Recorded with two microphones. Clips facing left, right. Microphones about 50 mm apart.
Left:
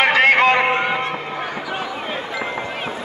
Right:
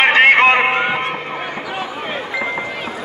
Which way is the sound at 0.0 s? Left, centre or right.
Right.